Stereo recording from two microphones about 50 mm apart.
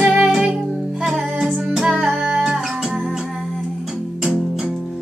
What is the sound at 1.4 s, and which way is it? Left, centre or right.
Music, centre.